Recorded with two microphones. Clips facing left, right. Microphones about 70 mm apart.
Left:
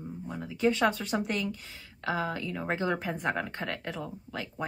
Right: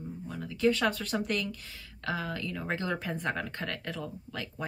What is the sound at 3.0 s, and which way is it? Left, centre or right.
Speech, centre.